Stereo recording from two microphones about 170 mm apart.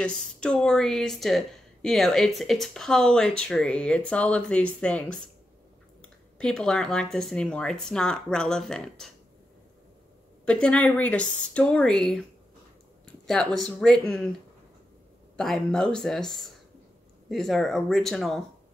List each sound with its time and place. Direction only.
0.0 s speech: 5° left (ahead or behind)
6.3 s speech: 5° left (ahead or behind)
10.4 s speech: 5° left (ahead or behind)
15.3 s speech: centre (ahead or behind)